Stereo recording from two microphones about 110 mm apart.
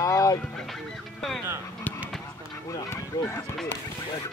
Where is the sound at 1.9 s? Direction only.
15° left (ahead or behind).